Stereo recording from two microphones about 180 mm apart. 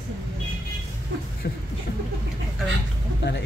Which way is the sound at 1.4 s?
60° left (ahead or behind).